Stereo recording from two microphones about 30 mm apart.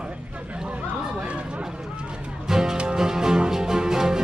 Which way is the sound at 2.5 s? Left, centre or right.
Right.